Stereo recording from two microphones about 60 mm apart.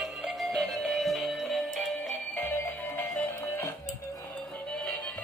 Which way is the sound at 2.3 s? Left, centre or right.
Left.